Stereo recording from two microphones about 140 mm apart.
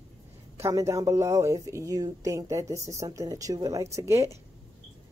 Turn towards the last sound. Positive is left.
turn(degrees=-20)  # may be behind; listen again after turning